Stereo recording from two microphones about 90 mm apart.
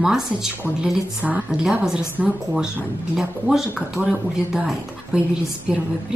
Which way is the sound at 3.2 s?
5° right (ahead or behind).